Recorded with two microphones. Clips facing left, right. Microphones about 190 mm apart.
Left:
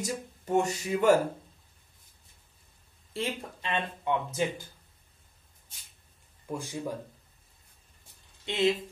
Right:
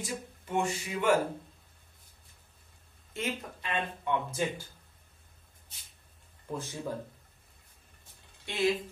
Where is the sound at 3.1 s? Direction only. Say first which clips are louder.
Left 2 dB; 30° left (ahead or behind).